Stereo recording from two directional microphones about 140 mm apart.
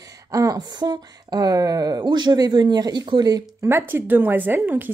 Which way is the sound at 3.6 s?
15° right (ahead or behind).